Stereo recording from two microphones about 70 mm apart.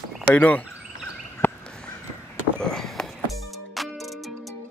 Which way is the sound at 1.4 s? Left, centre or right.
Left.